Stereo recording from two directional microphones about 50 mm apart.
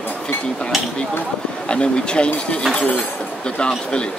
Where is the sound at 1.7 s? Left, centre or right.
Centre.